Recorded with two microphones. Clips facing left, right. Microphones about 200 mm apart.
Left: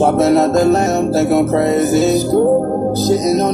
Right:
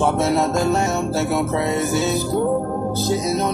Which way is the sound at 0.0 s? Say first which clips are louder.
Left 7 dB; 40° left (ahead or behind).